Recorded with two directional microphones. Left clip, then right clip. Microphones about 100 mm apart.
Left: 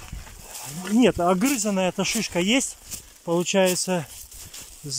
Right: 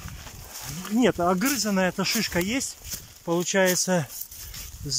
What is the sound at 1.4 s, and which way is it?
Speech, 30° left (ahead or behind).